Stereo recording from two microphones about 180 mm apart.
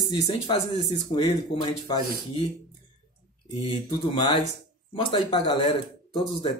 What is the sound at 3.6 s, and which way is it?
Speech, 25° left (ahead or behind).